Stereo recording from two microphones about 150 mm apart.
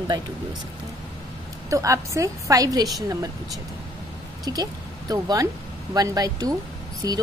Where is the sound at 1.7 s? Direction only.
20° right (ahead or behind).